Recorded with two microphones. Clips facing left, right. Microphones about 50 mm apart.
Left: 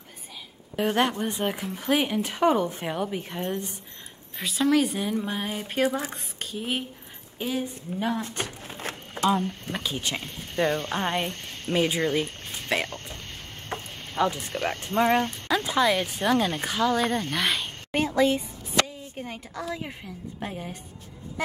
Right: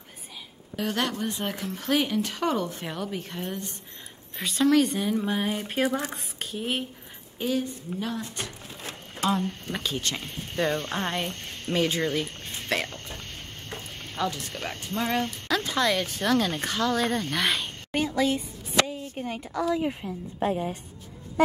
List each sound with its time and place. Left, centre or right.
0.7 s speech: left
4.4 s speech: centre
7.3 s a woman's voice: centre
8.0 s speech: left
9.2 s speech: centre
14.1 s speech: centre
15.4 s speech: centre
18.0 s a sound: centre
19.1 s speech: centre